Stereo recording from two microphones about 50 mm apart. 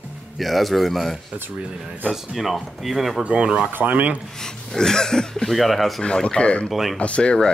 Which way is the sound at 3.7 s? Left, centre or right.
Right.